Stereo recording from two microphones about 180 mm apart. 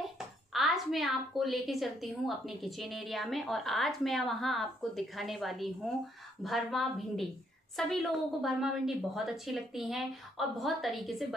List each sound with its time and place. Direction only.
0.5 s a woman's voice: centre (ahead or behind)